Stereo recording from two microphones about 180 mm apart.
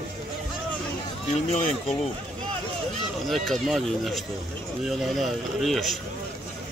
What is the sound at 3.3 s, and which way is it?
Speech, centre (ahead or behind).